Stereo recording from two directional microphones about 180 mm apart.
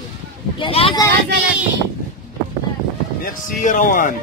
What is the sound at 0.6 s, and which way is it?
Speech, 30° left (ahead or behind).